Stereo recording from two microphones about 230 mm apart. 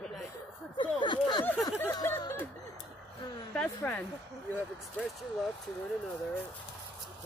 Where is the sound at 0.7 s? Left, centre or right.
Centre.